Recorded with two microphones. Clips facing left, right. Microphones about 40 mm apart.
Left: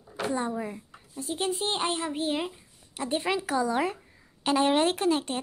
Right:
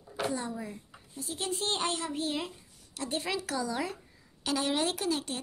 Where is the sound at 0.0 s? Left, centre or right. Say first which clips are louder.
Left 1 dB; centre.